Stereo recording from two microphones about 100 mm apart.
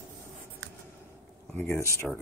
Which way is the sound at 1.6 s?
25° left (ahead or behind).